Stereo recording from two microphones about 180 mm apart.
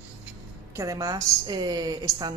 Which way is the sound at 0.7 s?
20° right (ahead or behind).